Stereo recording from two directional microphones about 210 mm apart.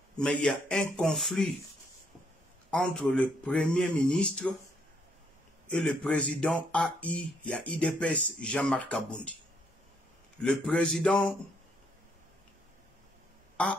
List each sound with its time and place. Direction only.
0.2 s speech: 5° left (ahead or behind)
2.7 s speech: 5° left (ahead or behind)
5.7 s speech: 5° left (ahead or behind)
10.4 s speech: 5° left (ahead or behind)
13.6 s speech: 5° left (ahead or behind)